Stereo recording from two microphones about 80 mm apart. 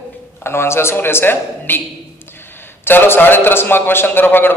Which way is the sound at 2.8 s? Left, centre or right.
Left.